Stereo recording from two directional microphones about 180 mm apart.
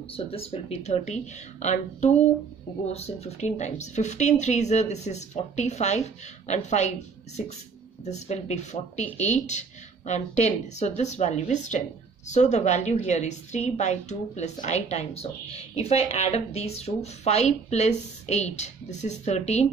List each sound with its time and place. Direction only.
0.1 s a woman's voice: 30° left (ahead or behind)
8.0 s a woman's voice: 40° left (ahead or behind)